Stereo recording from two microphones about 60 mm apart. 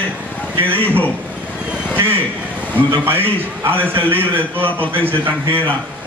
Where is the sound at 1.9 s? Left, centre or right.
Right.